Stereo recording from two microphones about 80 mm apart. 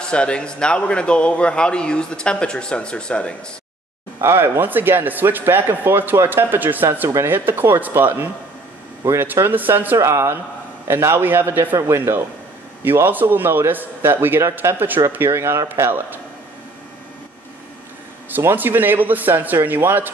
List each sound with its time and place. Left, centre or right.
0.0 s a man's voice: centre
4.2 s a man's voice: right
9.3 s a man's voice: right
9.9 s a man's voice: right
18.3 s a man's voice: right